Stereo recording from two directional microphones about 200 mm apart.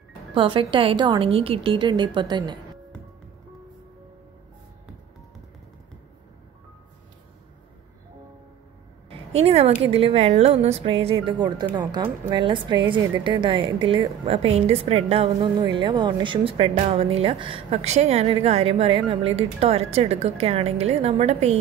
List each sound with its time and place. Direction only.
0.3 s a woman's voice: 25° right (ahead or behind)
9.4 s a woman's voice: 30° right (ahead or behind)